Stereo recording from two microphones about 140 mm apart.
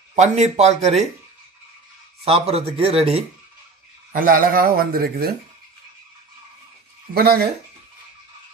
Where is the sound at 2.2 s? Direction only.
45° right (ahead or behind).